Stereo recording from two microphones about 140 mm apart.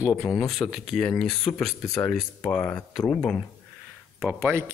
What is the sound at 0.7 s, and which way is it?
Speech, 5° left (ahead or behind).